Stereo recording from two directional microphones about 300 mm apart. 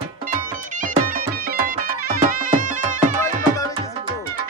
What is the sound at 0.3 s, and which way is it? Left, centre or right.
Music, right.